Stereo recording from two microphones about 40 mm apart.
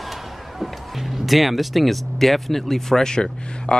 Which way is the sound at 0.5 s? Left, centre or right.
Centre.